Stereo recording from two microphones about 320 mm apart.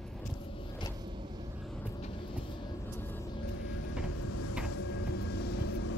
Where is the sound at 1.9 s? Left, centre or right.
Centre.